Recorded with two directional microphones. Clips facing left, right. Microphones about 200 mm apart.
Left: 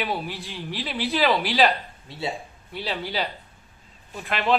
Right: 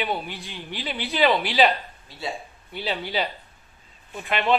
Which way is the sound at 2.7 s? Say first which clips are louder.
Right 1 dB; centre (ahead or behind).